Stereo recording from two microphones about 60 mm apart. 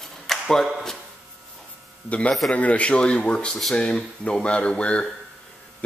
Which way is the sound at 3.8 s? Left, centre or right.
Centre.